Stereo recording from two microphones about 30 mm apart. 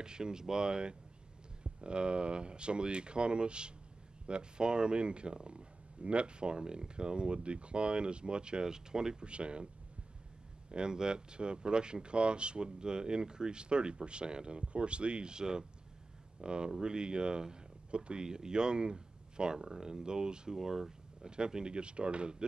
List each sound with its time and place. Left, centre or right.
0.0 s speech: right
9.2 s speech: right
10.7 s speech: right
20.5 s speech: centre
21.2 s speech: right